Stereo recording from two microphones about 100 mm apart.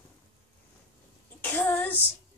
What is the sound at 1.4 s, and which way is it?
Child singing, 20° left (ahead or behind).